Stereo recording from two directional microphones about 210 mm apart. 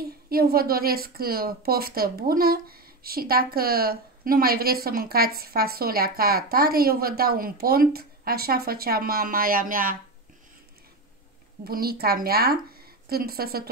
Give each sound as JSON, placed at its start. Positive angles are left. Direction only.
{"t": 0.0, "sound": "a woman's voice", "side_deg": -45}
{"t": 11.6, "sound": "a woman's voice", "side_deg": -45}